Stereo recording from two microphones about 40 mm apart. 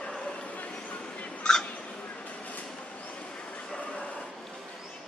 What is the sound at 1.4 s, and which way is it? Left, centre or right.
Hiccup, centre.